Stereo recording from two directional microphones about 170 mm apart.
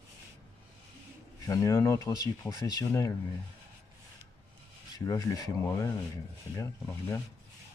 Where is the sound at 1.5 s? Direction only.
20° left (ahead or behind).